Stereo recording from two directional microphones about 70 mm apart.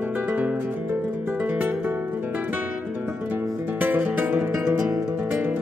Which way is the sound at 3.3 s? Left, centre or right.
Right.